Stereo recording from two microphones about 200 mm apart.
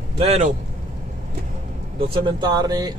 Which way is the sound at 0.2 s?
35° right (ahead or behind).